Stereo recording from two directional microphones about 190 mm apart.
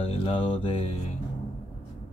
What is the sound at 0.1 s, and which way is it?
Mantra, 30° left (ahead or behind).